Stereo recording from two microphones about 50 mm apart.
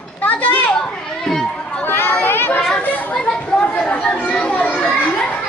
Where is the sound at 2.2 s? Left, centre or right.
Left.